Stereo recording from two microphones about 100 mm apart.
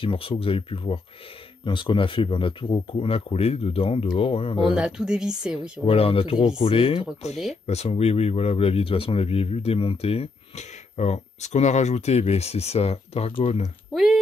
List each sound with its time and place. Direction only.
0.0 s speech: 65° left (ahead or behind)
4.7 s speech: 5° right (ahead or behind)
5.6 s speech: 70° left (ahead or behind)
7.6 s speech: 90° left
11.9 s speech: 90° left